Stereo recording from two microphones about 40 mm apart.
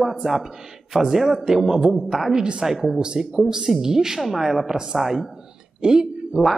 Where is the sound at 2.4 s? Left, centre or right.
Right.